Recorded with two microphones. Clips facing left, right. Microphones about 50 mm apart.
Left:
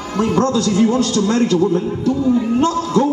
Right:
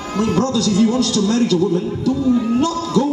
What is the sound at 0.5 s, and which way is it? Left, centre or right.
A man's voice, left.